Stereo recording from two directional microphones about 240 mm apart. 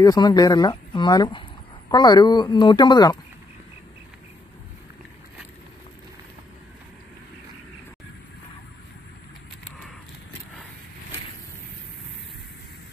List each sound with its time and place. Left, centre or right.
0.0 s speech: centre